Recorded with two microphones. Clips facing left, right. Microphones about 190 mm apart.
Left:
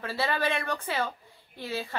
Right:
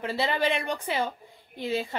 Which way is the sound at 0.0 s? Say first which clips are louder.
Right 2 dB; 20° right (ahead or behind).